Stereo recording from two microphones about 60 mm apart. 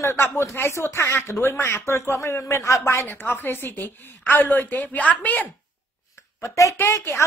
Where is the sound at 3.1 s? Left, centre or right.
Left.